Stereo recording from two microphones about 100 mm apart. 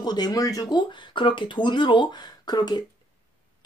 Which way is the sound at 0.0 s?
45° left (ahead or behind).